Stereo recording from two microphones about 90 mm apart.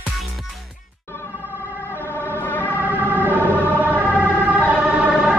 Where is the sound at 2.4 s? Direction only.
20° left (ahead or behind).